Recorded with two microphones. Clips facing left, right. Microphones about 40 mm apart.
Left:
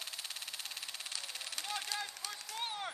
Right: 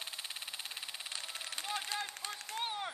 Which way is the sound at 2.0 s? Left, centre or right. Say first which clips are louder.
Right 2 dB; right.